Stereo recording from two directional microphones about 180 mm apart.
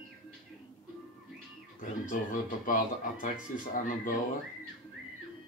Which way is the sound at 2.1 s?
45° left (ahead or behind).